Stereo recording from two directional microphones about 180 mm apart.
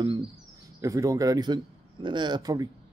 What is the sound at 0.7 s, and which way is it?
A man's voice, 20° right (ahead or behind).